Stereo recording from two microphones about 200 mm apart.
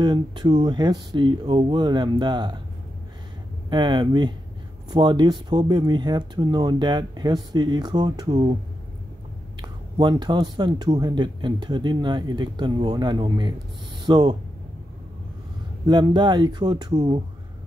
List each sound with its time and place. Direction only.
0.0 s speech: 20° right (ahead or behind)
3.7 s speech: 20° right (ahead or behind)
9.6 s speech: 20° right (ahead or behind)
15.9 s speech: 20° right (ahead or behind)